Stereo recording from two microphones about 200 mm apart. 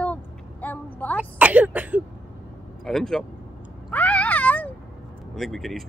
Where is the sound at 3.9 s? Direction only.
10° left (ahead or behind).